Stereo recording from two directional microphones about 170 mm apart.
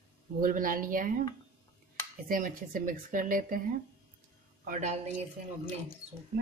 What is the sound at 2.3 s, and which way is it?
Speech, 55° right (ahead or behind).